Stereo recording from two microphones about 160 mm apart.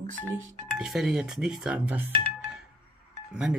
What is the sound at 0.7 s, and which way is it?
Speech, 5° right (ahead or behind).